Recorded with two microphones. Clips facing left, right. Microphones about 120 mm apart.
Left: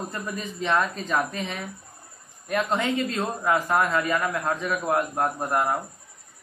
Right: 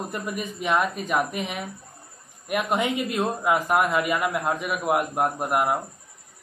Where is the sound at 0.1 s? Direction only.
15° right (ahead or behind).